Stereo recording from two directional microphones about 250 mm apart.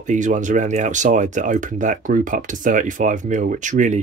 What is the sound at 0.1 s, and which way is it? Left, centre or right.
Speech, right.